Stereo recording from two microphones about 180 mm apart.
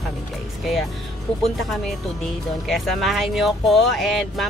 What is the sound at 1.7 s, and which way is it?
Speech, centre (ahead or behind).